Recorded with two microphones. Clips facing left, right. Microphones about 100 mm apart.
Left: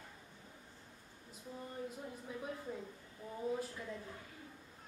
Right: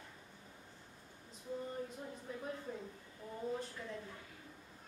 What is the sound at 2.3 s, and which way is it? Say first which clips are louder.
Speech: even; 5° left (ahead or behind).